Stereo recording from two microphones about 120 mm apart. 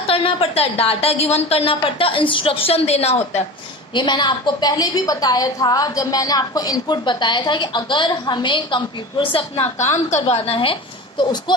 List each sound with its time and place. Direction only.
0.1 s a woman's voice: 50° left (ahead or behind)
3.9 s a woman's voice: 40° left (ahead or behind)
9.9 s a woman's voice: 70° left (ahead or behind); by 11.5 s 40° left (ahead or behind)